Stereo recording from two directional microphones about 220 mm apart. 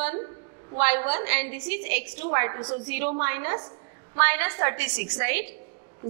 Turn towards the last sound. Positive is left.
turn(degrees=-15)  # may be behind; listen again after turning